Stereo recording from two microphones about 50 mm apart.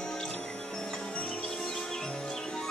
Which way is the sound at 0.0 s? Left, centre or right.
Centre.